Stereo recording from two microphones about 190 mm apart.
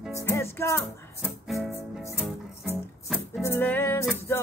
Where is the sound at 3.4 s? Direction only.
10° left (ahead or behind).